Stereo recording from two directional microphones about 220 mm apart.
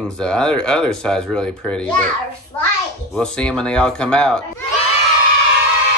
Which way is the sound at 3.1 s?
5° left (ahead or behind).